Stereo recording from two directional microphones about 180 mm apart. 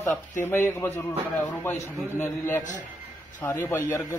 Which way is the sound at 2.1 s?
10° left (ahead or behind).